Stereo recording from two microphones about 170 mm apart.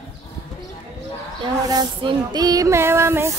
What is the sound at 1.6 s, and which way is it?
Female singing, 25° right (ahead or behind).